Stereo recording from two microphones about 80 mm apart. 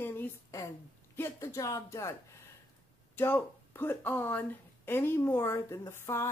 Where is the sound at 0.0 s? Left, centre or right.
Left.